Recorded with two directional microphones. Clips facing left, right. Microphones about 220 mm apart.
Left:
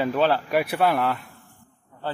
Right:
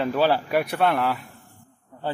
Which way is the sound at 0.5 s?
5° left (ahead or behind).